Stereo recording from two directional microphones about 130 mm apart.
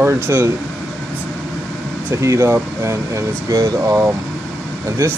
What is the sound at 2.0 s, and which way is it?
Speech, 20° right (ahead or behind).